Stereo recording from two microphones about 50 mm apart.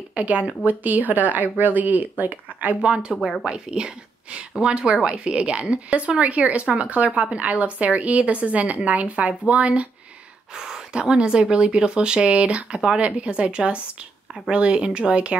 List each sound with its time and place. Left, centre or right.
0.1 s speech: right
2.8 s speech: centre
10.5 s speech: centre